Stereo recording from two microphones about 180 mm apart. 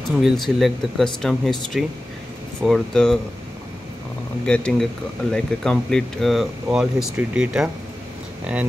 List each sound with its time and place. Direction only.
0.2 s speech: centre (ahead or behind)
4.5 s speech: 5° left (ahead or behind)